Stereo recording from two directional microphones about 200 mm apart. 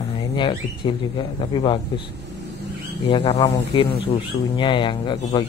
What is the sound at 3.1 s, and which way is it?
Speech, 25° left (ahead or behind).